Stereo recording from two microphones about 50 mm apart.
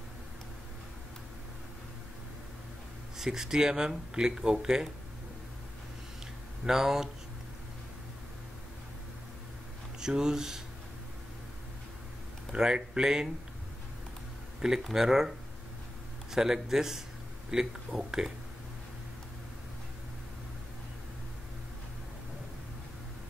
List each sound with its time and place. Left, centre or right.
3.2 s speech: centre
6.6 s speech: centre
9.9 s speech: centre
12.5 s speech: centre
14.8 s speech: centre